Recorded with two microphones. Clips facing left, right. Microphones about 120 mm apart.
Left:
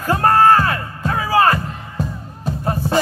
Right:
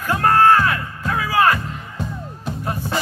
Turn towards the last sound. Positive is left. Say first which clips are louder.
# left 6 dB
turn(degrees=30)  # may be behind; listen again after turning